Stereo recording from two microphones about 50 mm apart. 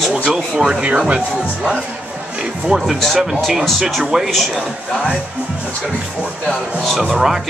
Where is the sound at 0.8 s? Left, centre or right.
Right.